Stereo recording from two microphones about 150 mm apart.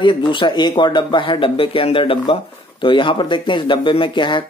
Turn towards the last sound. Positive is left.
turn(degrees=30)  # may be behind; listen again after turning